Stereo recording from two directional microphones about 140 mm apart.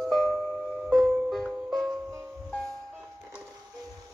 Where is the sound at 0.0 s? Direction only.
5° left (ahead or behind).